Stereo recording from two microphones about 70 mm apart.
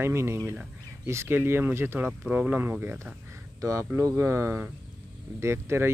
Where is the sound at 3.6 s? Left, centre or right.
Right.